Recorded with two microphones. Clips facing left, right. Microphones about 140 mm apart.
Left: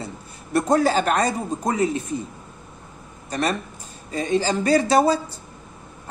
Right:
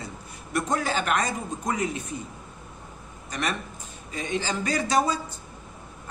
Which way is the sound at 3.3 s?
35° left (ahead or behind).